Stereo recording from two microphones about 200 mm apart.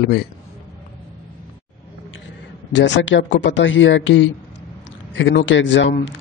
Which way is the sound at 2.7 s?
65° left (ahead or behind).